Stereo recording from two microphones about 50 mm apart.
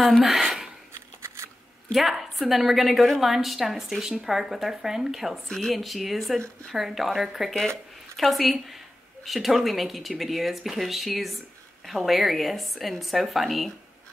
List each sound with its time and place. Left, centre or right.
0.2 s speech: centre
0.9 s a sound: right
2.0 s speech: centre
5.5 s speech: centre